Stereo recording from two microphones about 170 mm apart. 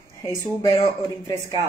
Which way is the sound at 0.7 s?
20° left (ahead or behind).